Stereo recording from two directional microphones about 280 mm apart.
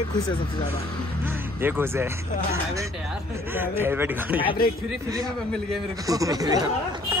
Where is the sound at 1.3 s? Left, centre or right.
Centre.